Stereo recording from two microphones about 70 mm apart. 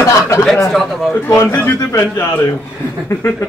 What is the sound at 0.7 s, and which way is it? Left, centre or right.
Speech, centre.